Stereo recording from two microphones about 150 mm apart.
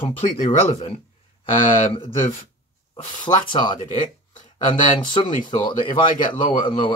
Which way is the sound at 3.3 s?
30° left (ahead or behind).